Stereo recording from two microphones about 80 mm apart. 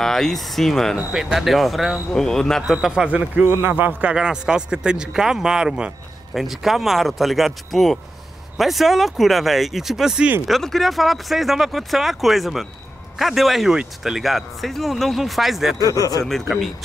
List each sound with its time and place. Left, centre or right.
0.0 s speech: centre
2.6 s speech: centre
3.1 s a man's voice: centre
4.1 s speech: centre
15.8 s speech: left
16.3 s speech: centre